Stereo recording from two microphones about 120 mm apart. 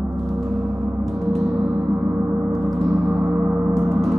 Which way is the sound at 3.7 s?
25° right (ahead or behind).